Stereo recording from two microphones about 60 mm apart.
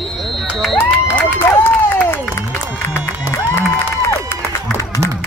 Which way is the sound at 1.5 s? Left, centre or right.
Left.